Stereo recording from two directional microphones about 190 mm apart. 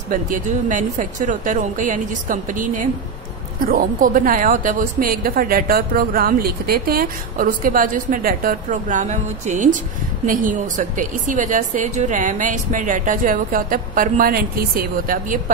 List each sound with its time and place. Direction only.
0.1 s a woman's voice: 45° right (ahead or behind)